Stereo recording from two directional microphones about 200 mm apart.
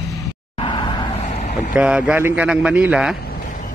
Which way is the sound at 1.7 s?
5° right (ahead or behind).